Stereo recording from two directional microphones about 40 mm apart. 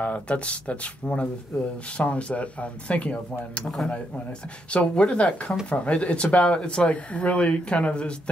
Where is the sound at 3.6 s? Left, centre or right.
Centre.